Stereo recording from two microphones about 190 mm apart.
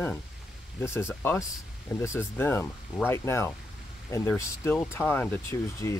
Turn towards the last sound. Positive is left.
turn(degrees=15)  # may be behind; listen again after turning